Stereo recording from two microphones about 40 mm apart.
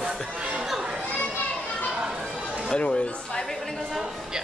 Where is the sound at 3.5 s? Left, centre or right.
Centre.